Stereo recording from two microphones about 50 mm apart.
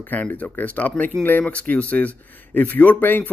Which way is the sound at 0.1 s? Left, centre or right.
Left.